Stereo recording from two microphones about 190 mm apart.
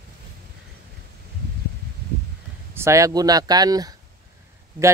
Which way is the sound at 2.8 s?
15° right (ahead or behind).